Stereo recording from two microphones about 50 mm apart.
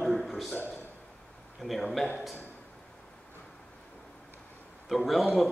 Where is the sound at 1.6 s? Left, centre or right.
Centre.